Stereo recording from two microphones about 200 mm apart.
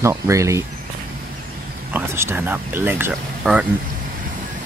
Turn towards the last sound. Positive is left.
turn(degrees=-5)  # may be behind; listen again after turning